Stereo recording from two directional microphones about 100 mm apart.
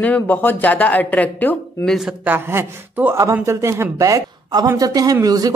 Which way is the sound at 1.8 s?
Centre (ahead or behind).